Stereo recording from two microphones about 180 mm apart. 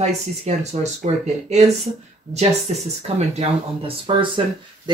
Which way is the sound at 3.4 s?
30° right (ahead or behind).